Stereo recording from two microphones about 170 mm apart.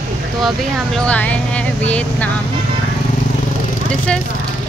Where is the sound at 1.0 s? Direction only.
10° left (ahead or behind).